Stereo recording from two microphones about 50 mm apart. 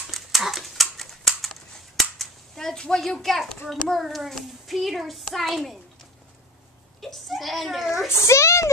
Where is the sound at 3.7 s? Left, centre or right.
Centre.